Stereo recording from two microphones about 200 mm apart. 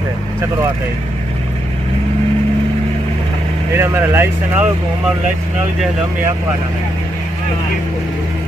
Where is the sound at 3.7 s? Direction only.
10° right (ahead or behind).